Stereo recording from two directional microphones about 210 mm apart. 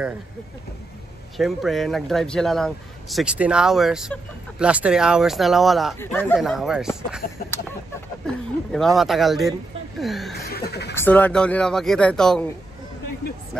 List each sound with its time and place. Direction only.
1.3 s speech: centre (ahead or behind)
6.3 s speech: centre (ahead or behind)
7.2 s a sound: 40° left (ahead or behind)
8.7 s speech: centre (ahead or behind)
10.3 s a sound: 50° left (ahead or behind)
11.0 s speech: 10° left (ahead or behind)